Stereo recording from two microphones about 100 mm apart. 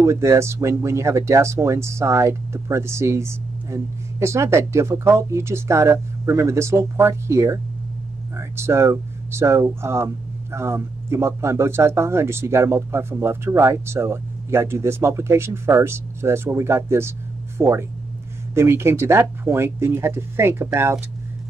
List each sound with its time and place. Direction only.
0.0 s speech: 30° right (ahead or behind)